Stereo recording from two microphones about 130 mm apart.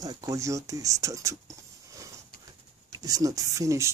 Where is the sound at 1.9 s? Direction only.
25° right (ahead or behind).